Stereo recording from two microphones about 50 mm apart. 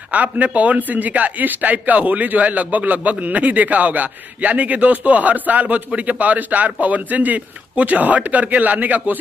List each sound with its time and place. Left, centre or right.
0.1 s a man's voice: right